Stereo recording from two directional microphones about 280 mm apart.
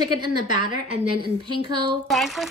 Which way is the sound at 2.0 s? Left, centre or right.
Centre.